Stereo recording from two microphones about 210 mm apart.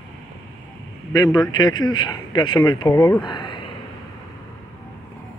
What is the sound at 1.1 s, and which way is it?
A man's voice, 20° left (ahead or behind).